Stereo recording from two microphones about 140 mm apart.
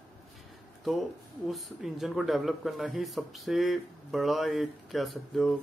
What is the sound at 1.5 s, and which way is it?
Speech, centre (ahead or behind).